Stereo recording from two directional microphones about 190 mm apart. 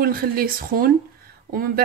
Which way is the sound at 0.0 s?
50° right (ahead or behind).